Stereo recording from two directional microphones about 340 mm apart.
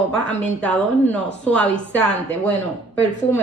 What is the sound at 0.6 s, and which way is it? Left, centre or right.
Speech, centre.